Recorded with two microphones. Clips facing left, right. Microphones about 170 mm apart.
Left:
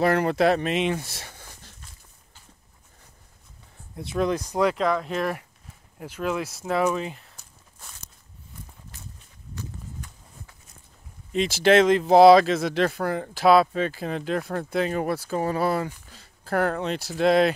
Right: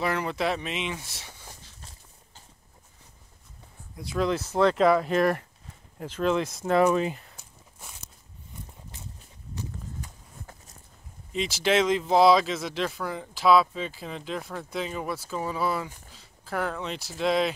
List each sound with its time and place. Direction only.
0.0 s speech: 45° left (ahead or behind)
1.2 s a sound: 55° left (ahead or behind)
1.8 s a sound: 30° right (ahead or behind)
3.9 s speech: 25° left (ahead or behind)
4.7 s speech: 5° right (ahead or behind)
5.9 s speech: 10° left (ahead or behind)
11.3 s speech: 55° left (ahead or behind)